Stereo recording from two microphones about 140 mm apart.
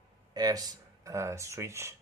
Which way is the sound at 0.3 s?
30° right (ahead or behind).